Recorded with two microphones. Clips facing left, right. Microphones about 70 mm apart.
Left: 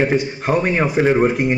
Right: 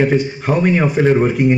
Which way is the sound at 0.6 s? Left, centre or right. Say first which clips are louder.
Right 7 dB; left.